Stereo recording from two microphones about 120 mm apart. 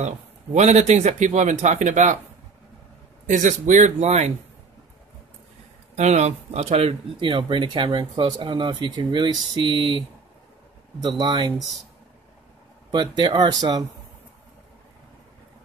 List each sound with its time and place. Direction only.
0.6 s speech: 70° right (ahead or behind); by 2.1 s 90° right
3.3 s speech: 90° right; by 4.3 s 75° right (ahead or behind)
5.9 s speech: 70° right (ahead or behind); by 11.6 s 35° right (ahead or behind)
12.9 s speech: 40° right (ahead or behind)